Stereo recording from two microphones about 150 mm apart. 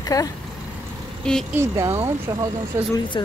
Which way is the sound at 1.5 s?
20° right (ahead or behind).